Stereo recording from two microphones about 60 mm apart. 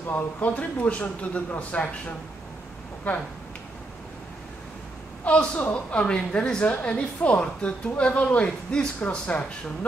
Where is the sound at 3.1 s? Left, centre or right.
Left.